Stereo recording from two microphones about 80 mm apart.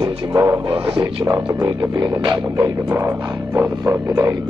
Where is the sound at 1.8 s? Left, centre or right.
Right.